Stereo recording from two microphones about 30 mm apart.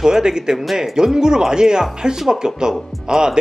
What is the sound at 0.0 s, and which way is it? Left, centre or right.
Speech, right.